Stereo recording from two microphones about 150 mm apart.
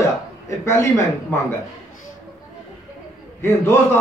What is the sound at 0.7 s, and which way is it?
Speech, 15° left (ahead or behind).